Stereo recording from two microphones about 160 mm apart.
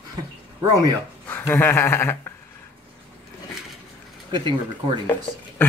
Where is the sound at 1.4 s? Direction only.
15° left (ahead or behind).